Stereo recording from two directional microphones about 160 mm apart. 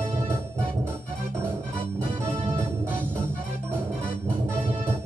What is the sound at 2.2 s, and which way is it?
Music, 15° right (ahead or behind).